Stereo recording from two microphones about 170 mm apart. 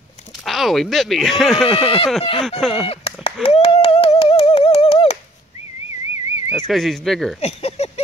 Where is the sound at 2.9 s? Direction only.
35° left (ahead or behind).